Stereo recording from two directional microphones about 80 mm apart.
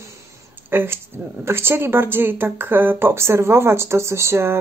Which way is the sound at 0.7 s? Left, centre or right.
Right.